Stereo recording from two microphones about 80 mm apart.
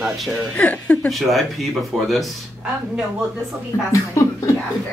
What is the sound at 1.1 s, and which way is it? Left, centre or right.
Speech, centre.